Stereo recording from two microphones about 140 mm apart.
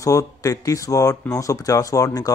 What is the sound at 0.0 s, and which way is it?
Speech, 25° left (ahead or behind).